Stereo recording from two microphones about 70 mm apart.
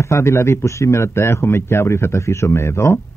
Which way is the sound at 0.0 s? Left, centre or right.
Left.